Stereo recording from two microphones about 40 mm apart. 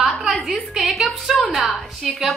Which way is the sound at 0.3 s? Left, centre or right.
Centre.